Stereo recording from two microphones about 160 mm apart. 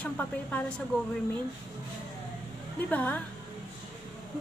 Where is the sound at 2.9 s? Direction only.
10° left (ahead or behind).